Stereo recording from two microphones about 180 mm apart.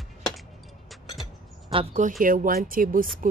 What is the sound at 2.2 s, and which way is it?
Speech, 50° right (ahead or behind).